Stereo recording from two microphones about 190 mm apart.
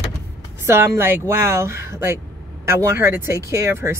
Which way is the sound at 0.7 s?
10° right (ahead or behind).